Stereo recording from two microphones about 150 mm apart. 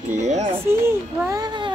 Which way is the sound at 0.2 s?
50° right (ahead or behind).